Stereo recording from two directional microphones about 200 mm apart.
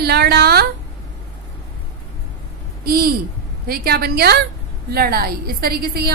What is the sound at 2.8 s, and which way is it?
A woman's voice, 50° right (ahead or behind).